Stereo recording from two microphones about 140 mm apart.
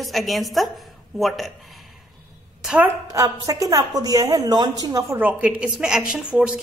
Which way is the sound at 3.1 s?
25° right (ahead or behind).